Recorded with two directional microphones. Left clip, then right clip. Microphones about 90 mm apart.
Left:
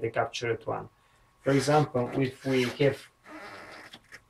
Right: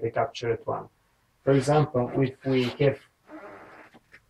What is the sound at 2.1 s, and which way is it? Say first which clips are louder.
Speech: right 2 dB; 35° left (ahead or behind).